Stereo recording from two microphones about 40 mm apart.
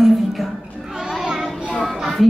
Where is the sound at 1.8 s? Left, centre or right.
Centre.